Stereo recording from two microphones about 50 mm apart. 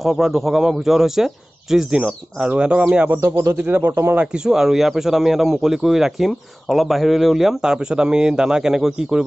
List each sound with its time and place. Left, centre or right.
0.0 s speech: centre; by 3.1 s right
3.3 s speech: right
3.5 s speech: right
4.5 s speech: centre